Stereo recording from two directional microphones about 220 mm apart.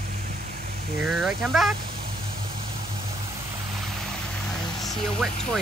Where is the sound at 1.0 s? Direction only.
5° right (ahead or behind).